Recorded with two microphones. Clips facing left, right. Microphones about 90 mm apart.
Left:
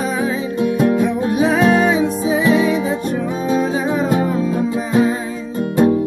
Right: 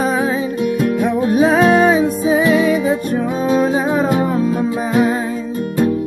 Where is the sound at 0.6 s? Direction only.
25° left (ahead or behind).